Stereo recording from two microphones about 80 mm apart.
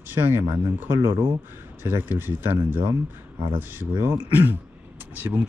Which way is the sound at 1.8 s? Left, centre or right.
Right.